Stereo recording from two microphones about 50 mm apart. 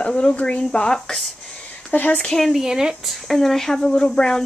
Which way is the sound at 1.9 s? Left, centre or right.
Left.